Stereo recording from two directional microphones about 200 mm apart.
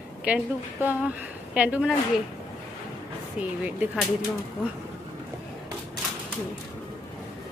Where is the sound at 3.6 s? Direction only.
10° right (ahead or behind).